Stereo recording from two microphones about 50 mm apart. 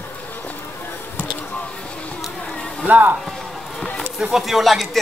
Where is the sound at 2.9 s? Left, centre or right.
Right.